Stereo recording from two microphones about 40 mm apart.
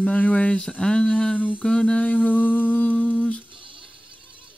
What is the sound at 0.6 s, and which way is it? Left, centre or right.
Speech, centre.